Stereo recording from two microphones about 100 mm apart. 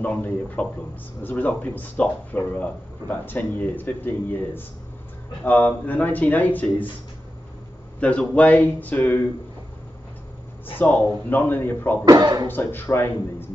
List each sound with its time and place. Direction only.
0.0 s speech: 15° left (ahead or behind)
8.0 s speech: 10° left (ahead or behind)
10.8 s speech: 20° left (ahead or behind)
12.0 s speech: 45° right (ahead or behind)
12.4 s speech: 20° left (ahead or behind)